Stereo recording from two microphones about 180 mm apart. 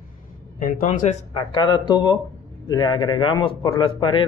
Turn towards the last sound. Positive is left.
turn(degrees=30)  # may be behind; listen again after turning